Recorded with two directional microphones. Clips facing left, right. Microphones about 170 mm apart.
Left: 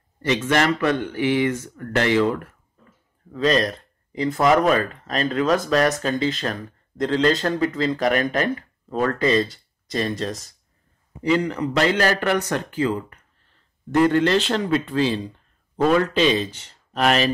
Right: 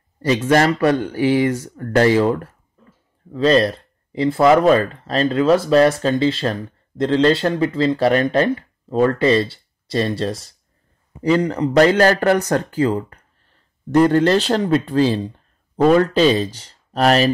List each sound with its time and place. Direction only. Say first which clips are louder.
0.2 s speech: right 5 dB; 35° right (ahead or behind)